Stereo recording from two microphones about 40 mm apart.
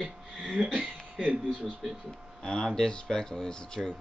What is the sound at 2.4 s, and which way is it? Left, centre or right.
Speech, centre.